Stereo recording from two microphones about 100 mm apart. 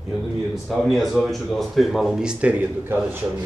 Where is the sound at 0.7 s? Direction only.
Centre (ahead or behind).